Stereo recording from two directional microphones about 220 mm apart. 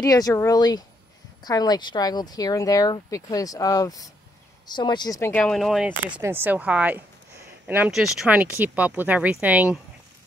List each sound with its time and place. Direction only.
0.0 s speech: 15° left (ahead or behind); by 9.8 s 5° right (ahead or behind)